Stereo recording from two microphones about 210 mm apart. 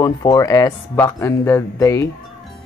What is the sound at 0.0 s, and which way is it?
Speech, 15° left (ahead or behind).